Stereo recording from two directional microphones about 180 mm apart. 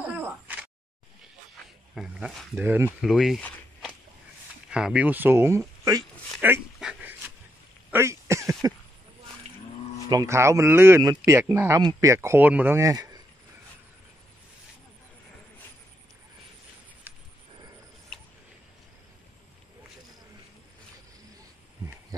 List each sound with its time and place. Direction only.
2.0 s speech: 5° right (ahead or behind)
4.6 s speech: 5° right (ahead or behind)
6.4 s dog: 10° right (ahead or behind)
7.9 s cough: 15° right (ahead or behind)
10.0 s speech: 20° right (ahead or behind)
18.1 s a sound: 5° left (ahead or behind)